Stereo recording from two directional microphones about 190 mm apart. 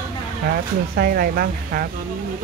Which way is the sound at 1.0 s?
55° right (ahead or behind).